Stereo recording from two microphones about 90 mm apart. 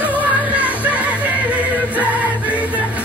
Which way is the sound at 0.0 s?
15° right (ahead or behind).